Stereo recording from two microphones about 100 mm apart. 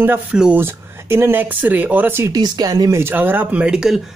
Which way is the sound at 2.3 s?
45° right (ahead or behind).